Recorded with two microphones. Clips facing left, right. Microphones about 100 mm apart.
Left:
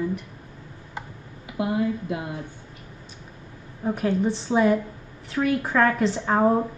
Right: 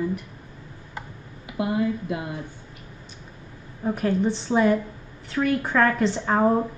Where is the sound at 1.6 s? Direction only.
20° left (ahead or behind).